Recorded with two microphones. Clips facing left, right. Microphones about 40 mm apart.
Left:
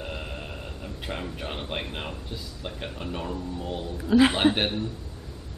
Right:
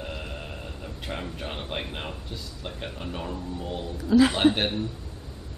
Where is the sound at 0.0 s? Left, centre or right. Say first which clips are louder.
Even; centre.